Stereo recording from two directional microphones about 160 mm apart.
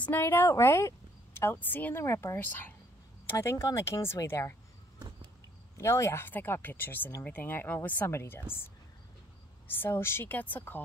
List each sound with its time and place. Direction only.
0.0 s speech: 15° left (ahead or behind)
4.9 s a sound: 25° right (ahead or behind)
5.8 s speech: 20° left (ahead or behind)
9.7 s speech: 15° left (ahead or behind)